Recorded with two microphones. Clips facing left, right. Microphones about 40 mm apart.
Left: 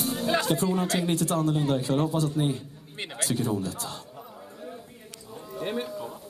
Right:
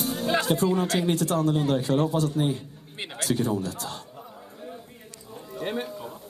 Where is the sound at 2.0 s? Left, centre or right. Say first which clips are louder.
Right 2 dB; right.